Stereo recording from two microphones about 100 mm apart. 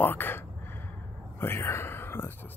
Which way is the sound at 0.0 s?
20° left (ahead or behind).